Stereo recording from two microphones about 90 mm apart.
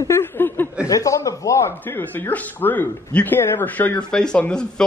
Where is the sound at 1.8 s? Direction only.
20° left (ahead or behind).